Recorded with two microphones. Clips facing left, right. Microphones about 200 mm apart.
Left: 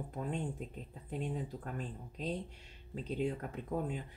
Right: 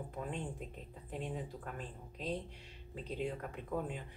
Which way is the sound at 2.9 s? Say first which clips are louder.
Left 4 dB; 40° left (ahead or behind).